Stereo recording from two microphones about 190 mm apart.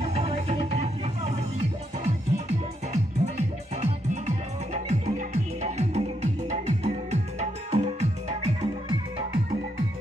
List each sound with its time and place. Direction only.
0.0 s music: 35° right (ahead or behind)